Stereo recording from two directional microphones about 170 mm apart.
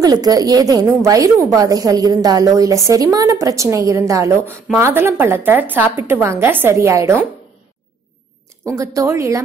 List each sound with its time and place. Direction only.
0.0 s a woman's voice: 20° right (ahead or behind)
8.6 s a woman's voice: 20° right (ahead or behind)